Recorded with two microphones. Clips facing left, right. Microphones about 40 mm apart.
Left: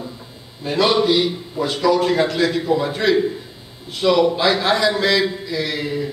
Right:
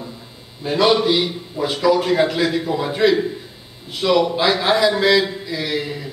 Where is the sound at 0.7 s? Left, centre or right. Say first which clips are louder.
Right 1 dB; centre.